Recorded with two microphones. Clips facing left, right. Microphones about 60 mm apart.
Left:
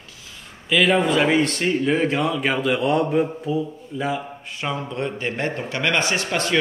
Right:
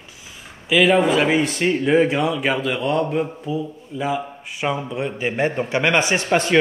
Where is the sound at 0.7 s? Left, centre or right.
Centre.